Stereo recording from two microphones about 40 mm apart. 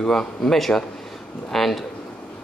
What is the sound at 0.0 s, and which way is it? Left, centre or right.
Speech, centre.